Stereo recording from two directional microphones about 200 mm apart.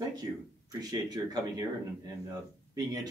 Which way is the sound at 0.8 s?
20° right (ahead or behind).